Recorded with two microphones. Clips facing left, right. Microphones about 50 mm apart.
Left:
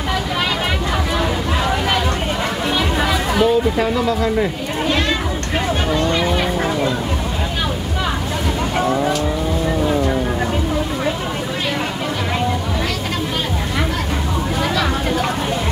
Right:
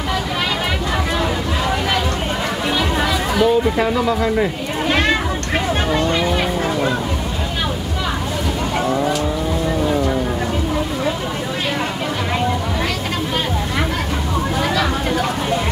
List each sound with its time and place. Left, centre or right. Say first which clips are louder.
2.8 s chatter: left 1 dB; centre
3.7 s speech: even; centre
4.8 s children playing: right 2 dB; right
8.7 s vehicle: left 1 dB; centre
14.6 s a sound: left 1 dB; centre